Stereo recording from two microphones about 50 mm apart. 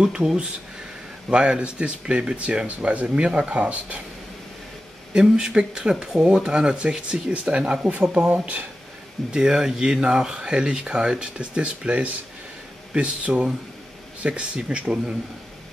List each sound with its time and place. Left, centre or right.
0.0 s speech: centre
5.1 s speech: centre; by 8.6 s right
9.3 s speech: centre